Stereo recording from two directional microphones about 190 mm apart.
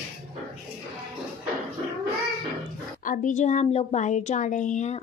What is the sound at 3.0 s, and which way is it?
A woman's voice, 45° left (ahead or behind).